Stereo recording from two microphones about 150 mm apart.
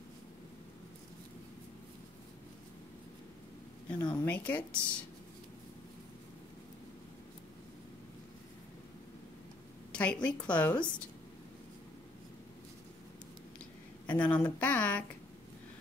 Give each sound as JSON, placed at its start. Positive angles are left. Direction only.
{"t": 4.0, "sound": "speech", "side_deg": 10}
{"t": 9.9, "sound": "a woman's voice", "side_deg": 5}
{"t": 14.0, "sound": "speech", "side_deg": 10}